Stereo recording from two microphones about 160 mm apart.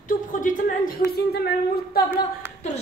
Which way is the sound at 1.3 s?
85° left.